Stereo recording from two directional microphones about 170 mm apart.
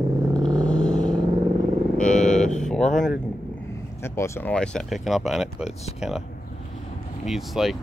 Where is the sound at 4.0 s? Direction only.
15° left (ahead or behind); by 6.2 s 5° right (ahead or behind).